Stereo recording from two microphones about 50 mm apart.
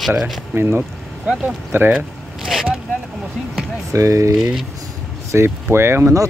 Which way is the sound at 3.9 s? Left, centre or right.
Right.